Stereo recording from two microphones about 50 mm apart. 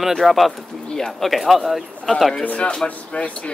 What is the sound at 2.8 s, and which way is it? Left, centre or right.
Speech, left.